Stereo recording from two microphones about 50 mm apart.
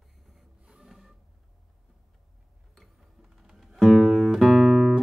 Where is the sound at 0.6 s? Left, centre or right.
Centre.